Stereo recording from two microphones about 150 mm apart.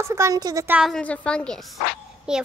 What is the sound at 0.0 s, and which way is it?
Speech, 20° right (ahead or behind).